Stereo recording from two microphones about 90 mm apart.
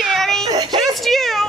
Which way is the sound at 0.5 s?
45° right (ahead or behind).